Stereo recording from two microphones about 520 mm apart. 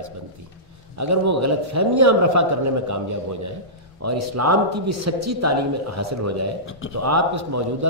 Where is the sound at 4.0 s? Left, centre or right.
Right.